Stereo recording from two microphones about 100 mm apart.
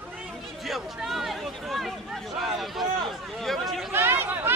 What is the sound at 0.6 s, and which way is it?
Speech, centre (ahead or behind).